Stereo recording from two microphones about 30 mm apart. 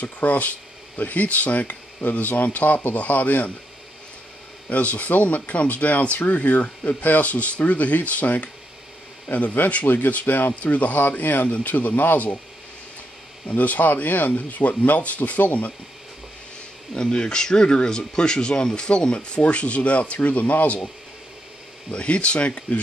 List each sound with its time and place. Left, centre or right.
0.0 s speech: left
4.6 s speech: left
10.0 s speech: left
10.5 s speech: left
11.2 s speech: left
13.5 s speech: left
16.9 s speech: left
21.9 s speech: left